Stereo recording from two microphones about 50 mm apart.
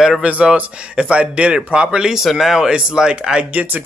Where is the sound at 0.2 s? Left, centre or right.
Right; by 2.7 s centre.